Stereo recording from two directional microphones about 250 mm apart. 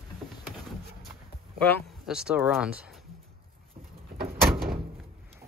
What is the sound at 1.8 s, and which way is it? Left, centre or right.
Speech, centre.